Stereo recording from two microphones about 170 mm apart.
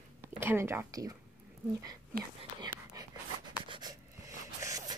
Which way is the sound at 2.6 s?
25° right (ahead or behind).